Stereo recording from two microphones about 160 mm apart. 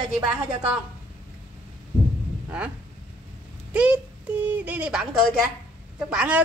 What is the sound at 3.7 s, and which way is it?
Speech, 10° right (ahead or behind).